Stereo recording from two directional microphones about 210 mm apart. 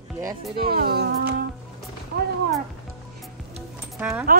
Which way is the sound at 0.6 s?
45° right (ahead or behind).